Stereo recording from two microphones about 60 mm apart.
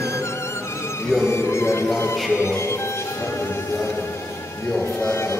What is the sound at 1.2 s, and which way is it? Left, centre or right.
Speech, left.